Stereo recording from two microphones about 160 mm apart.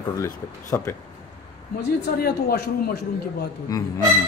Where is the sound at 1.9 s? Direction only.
85° left.